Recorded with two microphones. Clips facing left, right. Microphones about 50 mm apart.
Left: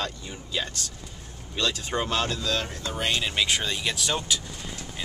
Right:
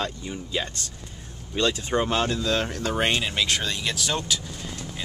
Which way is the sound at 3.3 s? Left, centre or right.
Centre.